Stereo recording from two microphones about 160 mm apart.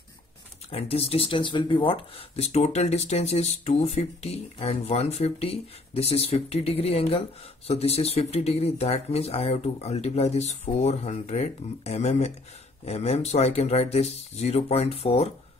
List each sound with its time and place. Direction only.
0.7 s speech: 40° left (ahead or behind)